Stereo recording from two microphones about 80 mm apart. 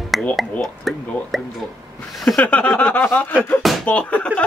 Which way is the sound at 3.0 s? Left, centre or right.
Left.